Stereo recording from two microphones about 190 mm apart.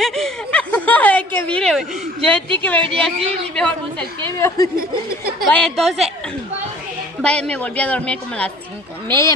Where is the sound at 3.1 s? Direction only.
30° right (ahead or behind).